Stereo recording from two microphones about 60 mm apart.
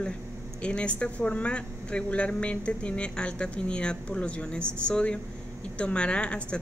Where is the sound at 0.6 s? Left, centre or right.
Centre.